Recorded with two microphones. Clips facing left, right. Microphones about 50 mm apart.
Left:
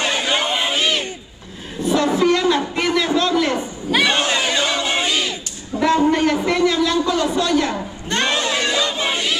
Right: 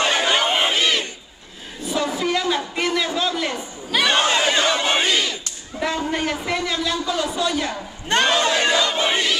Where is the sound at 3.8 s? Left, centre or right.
Centre.